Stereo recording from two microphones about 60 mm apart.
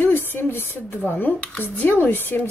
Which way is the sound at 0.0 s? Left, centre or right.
Left.